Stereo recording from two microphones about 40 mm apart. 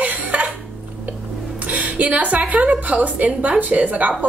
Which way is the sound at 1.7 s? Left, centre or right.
Right.